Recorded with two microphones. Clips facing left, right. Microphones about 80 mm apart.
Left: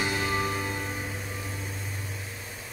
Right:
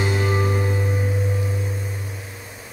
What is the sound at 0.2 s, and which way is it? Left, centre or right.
Music, right.